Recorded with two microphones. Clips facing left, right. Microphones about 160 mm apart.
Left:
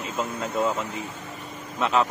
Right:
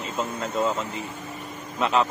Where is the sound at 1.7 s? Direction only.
Centre (ahead or behind).